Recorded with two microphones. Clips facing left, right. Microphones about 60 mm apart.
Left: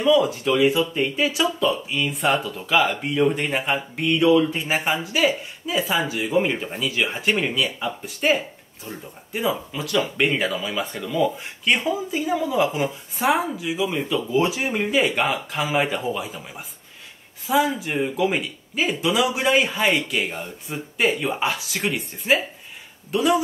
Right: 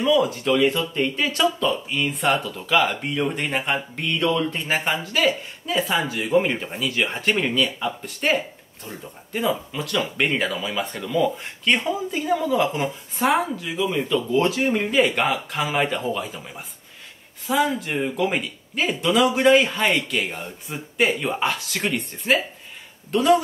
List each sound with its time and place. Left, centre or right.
0.0 s speech: centre